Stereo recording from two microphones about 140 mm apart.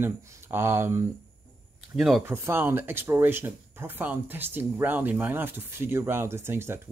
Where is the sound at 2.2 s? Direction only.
15° right (ahead or behind).